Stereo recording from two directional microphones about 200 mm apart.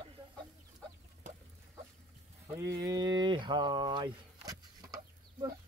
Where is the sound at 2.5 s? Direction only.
15° right (ahead or behind).